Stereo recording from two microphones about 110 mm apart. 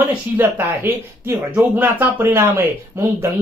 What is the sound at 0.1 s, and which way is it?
Speech, 20° right (ahead or behind).